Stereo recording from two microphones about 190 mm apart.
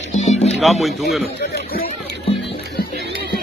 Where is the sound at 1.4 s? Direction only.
50° left (ahead or behind).